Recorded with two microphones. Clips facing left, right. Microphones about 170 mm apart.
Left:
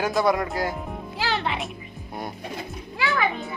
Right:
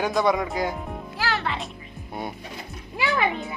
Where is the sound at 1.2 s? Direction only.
20° left (ahead or behind).